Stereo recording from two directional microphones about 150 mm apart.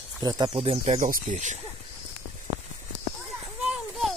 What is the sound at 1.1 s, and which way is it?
Speech, 55° right (ahead or behind).